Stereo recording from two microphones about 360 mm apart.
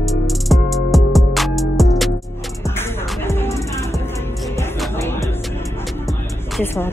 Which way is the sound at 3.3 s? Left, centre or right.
Centre.